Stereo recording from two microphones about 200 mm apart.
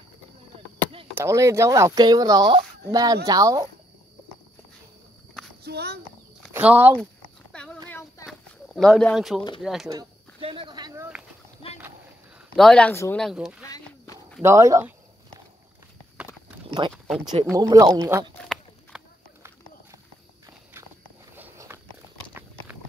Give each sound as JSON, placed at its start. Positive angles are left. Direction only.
{"t": 1.1, "sound": "speech", "side_deg": -15}
{"t": 5.6, "sound": "a sound", "side_deg": -55}
{"t": 6.5, "sound": "speech", "side_deg": -10}
{"t": 7.5, "sound": "a sound", "side_deg": 5}
{"t": 9.6, "sound": "speech", "side_deg": 0}
{"t": 10.4, "sound": "snake", "side_deg": -25}
{"t": 12.5, "sound": "speech", "side_deg": 5}
{"t": 13.7, "sound": "a sound", "side_deg": 15}
{"t": 14.4, "sound": "speech", "side_deg": -15}
{"t": 16.8, "sound": "speech", "side_deg": -25}
{"t": 18.4, "sound": "walk", "side_deg": 0}
{"t": 21.4, "sound": "walk", "side_deg": -10}
{"t": 22.3, "sound": "a sound", "side_deg": -10}